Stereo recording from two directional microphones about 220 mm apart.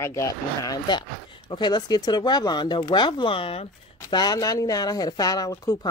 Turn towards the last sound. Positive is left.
turn(degrees=15)  # may be behind; listen again after turning